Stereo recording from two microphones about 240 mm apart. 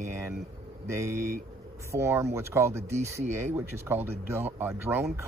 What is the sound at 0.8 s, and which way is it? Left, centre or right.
Speech, centre.